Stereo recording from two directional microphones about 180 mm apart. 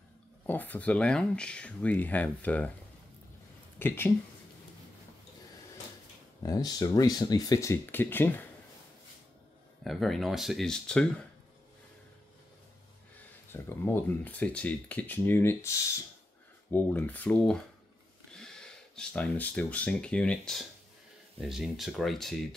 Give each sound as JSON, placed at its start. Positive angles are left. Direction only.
{"t": 0.5, "sound": "speech", "side_deg": 10}
{"t": 3.8, "sound": "speech", "side_deg": 10}
{"t": 6.4, "sound": "speech", "side_deg": 20}
{"t": 9.8, "sound": "speech", "side_deg": 0}
{"t": 13.5, "sound": "speech", "side_deg": 15}